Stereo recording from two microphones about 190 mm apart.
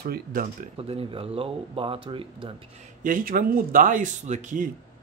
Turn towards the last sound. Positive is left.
turn(degrees=-40)  # may be behind; listen again after turning